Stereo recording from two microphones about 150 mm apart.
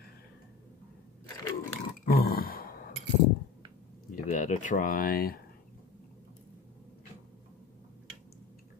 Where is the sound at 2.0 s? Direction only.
90° left.